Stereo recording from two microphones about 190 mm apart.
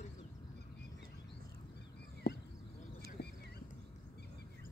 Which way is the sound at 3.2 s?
60° left (ahead or behind).